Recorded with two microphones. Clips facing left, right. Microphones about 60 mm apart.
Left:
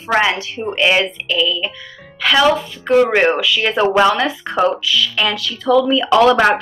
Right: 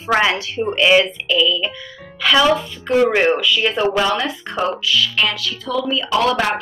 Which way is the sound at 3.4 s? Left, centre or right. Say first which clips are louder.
Left 2 dB; left.